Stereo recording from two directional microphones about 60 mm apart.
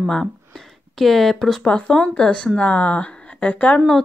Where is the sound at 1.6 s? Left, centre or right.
Centre.